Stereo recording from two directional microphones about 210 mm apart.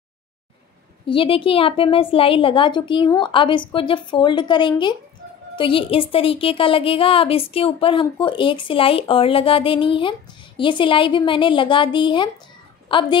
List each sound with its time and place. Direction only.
1.0 s a woman's voice: 25° left (ahead or behind)